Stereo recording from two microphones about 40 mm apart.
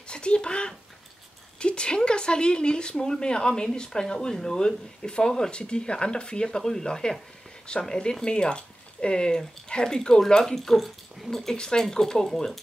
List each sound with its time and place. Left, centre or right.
0.1 s a sound: left
1.6 s speech: left
10.4 s speech: centre